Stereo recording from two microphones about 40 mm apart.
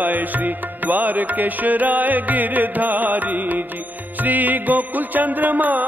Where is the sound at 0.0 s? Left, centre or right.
Right.